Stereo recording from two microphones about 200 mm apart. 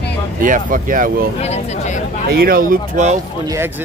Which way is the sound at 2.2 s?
45° right (ahead or behind).